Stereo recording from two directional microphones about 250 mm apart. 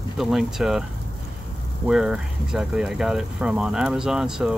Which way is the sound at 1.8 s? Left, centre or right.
Centre.